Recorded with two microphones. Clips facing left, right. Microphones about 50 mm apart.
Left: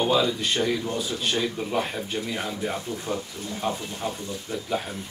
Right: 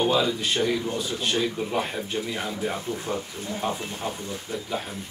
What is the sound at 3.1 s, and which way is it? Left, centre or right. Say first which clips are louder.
Speech: even; centre.